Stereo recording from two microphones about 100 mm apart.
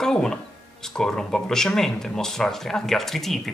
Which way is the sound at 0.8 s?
5° left (ahead or behind).